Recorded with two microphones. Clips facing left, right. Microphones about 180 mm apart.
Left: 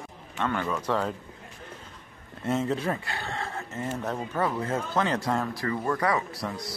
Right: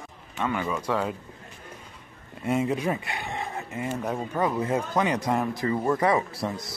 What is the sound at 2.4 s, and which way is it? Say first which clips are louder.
Speech: right 2 dB; 10° right (ahead or behind).